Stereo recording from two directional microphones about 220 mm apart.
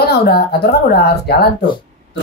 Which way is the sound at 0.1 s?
45° left (ahead or behind).